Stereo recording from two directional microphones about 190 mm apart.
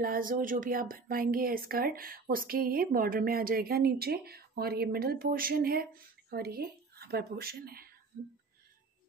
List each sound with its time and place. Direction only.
0.0 s a woman's voice: 50° right (ahead or behind)